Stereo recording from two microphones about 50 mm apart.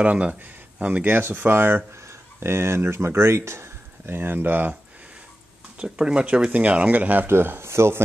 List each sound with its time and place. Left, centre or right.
0.0 s speech: right
1.1 s speech: right
2.0 s speech: right
5.8 s speech: right
7.2 s speech: right